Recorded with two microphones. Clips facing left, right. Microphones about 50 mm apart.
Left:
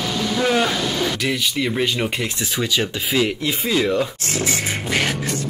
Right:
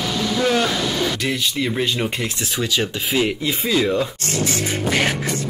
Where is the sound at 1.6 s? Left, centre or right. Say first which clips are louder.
Left 1 dB; left.